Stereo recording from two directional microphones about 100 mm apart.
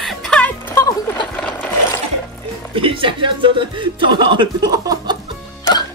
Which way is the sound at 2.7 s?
60° right (ahead or behind).